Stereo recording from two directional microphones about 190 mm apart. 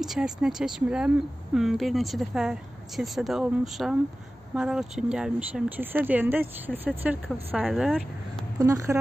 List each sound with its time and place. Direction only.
0.0 s speech: 5° right (ahead or behind)
8.5 s speech: 15° right (ahead or behind)